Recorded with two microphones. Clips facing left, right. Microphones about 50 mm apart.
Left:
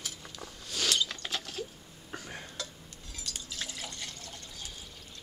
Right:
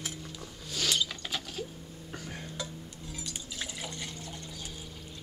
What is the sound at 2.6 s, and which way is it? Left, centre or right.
Liquid, centre.